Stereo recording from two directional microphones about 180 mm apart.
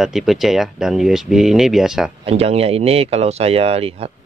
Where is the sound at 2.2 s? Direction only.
35° right (ahead or behind).